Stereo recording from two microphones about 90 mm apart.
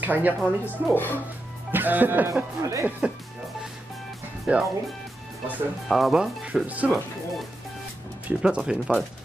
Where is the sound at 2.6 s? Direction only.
35° right (ahead or behind).